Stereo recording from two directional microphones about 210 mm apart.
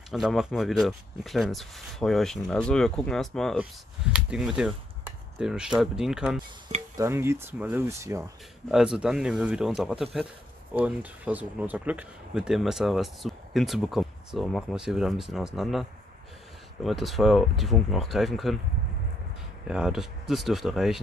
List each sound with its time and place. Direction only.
0.1 s speech: centre (ahead or behind)
8.6 s speech: 5° right (ahead or behind)
19.7 s speech: 5° right (ahead or behind)